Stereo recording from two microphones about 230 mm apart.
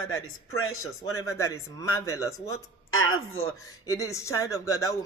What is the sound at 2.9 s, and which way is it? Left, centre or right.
Speech, left.